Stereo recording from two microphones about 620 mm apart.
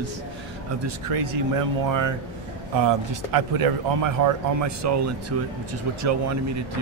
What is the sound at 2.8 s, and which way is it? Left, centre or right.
A man's voice, right.